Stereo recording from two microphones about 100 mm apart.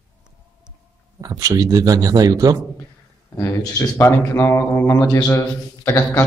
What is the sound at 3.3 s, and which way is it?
Speech, 35° left (ahead or behind).